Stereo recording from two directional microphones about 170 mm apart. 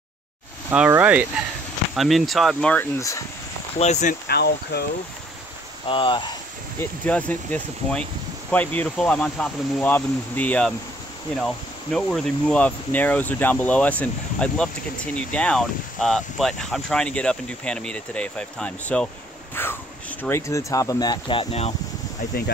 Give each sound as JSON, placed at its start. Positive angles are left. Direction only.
{"t": 0.7, "sound": "speech", "side_deg": -10}
{"t": 3.0, "sound": "speech", "side_deg": 20}
{"t": 3.7, "sound": "speech", "side_deg": 40}
{"t": 4.3, "sound": "speech", "side_deg": 70}
{"t": 5.9, "sound": "speech", "side_deg": 30}
{"t": 6.8, "sound": "speech", "side_deg": 10}